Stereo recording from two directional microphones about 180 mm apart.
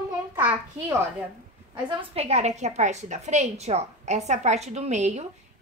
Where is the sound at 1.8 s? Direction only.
35° right (ahead or behind).